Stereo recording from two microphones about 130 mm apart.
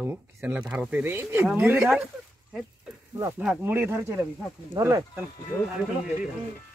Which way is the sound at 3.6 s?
15° right (ahead or behind).